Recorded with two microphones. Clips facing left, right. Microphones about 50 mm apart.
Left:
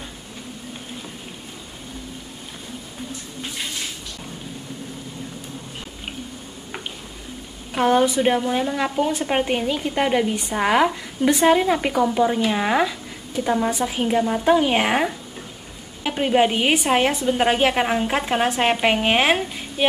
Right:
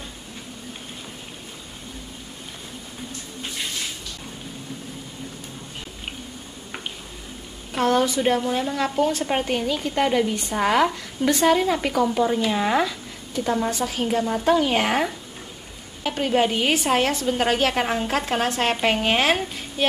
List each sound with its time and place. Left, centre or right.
7.7 s a woman's voice: centre